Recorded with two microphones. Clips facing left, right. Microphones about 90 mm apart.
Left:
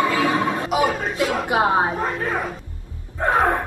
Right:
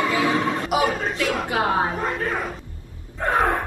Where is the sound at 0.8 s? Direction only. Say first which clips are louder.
Left 2 dB; 30° left (ahead or behind).